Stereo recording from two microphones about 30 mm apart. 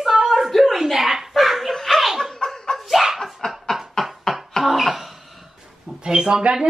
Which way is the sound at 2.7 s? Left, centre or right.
Centre.